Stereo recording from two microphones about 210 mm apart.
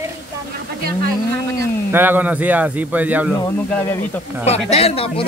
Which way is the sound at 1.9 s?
10° right (ahead or behind).